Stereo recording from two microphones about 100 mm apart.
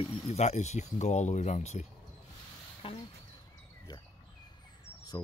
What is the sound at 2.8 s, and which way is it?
Speech, 65° left (ahead or behind).